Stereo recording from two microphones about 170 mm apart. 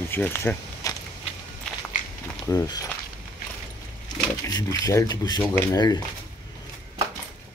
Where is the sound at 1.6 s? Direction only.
5° left (ahead or behind).